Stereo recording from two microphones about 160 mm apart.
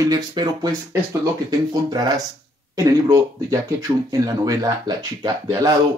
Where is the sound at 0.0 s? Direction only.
25° right (ahead or behind).